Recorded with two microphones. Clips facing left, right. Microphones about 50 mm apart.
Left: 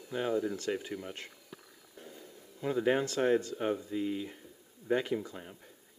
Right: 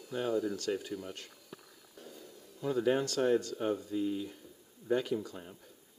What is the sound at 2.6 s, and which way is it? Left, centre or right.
Speech, left.